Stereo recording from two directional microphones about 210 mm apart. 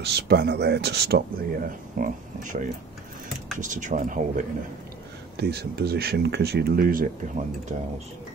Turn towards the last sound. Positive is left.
turn(degrees=-40)  # may be behind; listen again after turning